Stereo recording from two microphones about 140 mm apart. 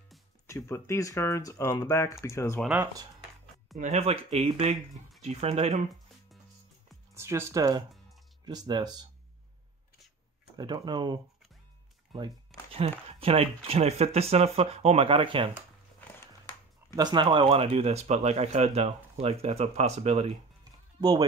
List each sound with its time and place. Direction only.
0.5 s speech: 20° left (ahead or behind)
3.7 s speech: 55° right (ahead or behind)
7.2 s speech: 20° right (ahead or behind)
10.5 s speech: 30° right (ahead or behind)
12.8 s speech: 45° right (ahead or behind)
16.9 s speech: 30° right (ahead or behind); by 20.3 s 50° right (ahead or behind)
21.0 s speech: 30° right (ahead or behind)